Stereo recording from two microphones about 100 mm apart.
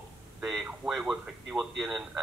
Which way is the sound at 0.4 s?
5° right (ahead or behind).